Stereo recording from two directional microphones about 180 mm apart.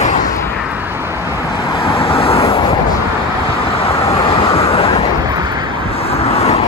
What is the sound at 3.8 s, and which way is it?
Vehicle, 35° left (ahead or behind).